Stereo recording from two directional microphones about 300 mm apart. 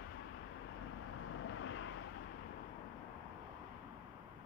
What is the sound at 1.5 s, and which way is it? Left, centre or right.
Vehicle, left.